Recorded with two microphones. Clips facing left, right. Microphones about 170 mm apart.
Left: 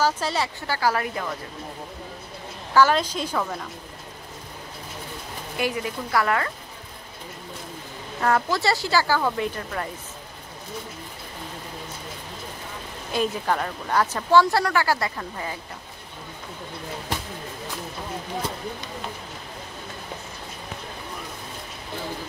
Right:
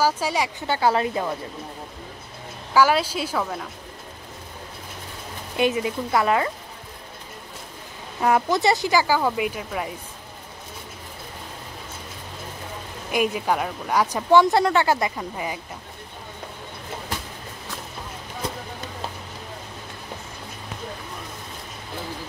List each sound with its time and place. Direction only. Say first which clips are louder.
0.0 s speech: right 1 dB; 10° right (ahead or behind)
2.7 s speech: even; 10° right (ahead or behind)
5.6 s speech: right 5 dB; 20° right (ahead or behind)
8.2 s speech: right 2 dB; 15° right (ahead or behind)
13.1 s speech: right 2 dB; 10° right (ahead or behind)